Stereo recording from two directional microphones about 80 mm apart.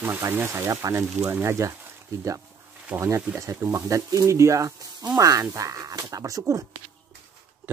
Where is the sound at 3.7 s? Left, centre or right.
Right.